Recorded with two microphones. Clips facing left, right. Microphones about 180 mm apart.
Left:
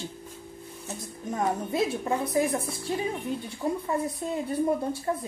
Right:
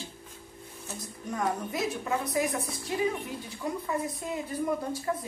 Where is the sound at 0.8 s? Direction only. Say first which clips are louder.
Left 3 dB; 25° left (ahead or behind).